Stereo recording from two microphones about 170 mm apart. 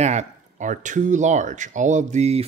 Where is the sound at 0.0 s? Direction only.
40° right (ahead or behind).